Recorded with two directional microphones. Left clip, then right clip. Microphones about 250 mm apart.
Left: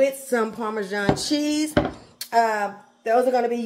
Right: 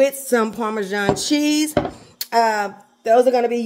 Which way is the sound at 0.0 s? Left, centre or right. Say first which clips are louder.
Right 4 dB; right.